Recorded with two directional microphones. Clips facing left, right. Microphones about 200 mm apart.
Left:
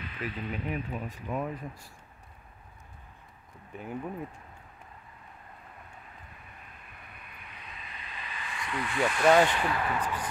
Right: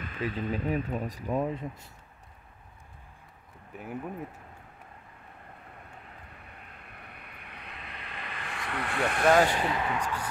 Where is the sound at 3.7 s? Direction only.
5° right (ahead or behind).